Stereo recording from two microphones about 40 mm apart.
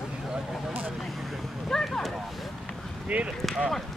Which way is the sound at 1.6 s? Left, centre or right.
Centre.